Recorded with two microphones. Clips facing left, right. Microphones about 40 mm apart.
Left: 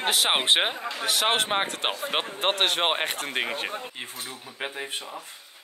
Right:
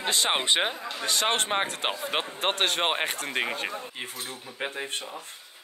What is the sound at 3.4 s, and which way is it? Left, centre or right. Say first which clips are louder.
Speech: even; left.